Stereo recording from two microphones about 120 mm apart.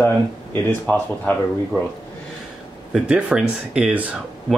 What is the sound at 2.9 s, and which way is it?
Speech, 5° right (ahead or behind).